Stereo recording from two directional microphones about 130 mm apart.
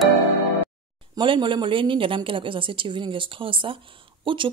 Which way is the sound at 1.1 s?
40° right (ahead or behind).